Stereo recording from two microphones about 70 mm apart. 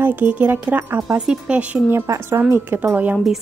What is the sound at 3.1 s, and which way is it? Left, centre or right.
Speech, centre.